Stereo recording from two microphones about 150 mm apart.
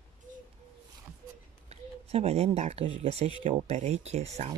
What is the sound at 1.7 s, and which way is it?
Speech, 45° right (ahead or behind).